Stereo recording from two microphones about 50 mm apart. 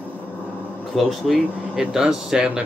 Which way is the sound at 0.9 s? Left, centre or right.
Centre.